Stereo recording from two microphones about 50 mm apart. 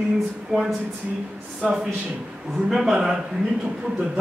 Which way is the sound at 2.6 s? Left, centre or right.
Centre.